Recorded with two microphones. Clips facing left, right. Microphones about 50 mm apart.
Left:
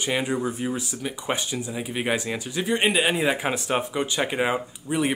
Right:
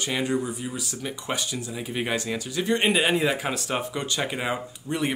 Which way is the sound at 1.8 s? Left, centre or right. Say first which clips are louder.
Left 2 dB; centre.